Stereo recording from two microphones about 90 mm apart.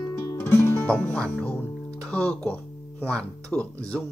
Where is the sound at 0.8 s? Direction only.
15° left (ahead or behind).